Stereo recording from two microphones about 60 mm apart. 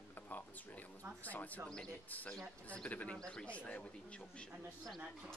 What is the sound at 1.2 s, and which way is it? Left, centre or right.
Speech, left.